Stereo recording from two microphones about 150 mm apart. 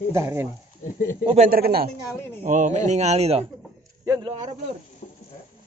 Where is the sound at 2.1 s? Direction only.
15° left (ahead or behind).